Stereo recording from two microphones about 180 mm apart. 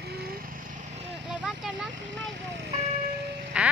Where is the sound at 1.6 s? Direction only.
5° right (ahead or behind).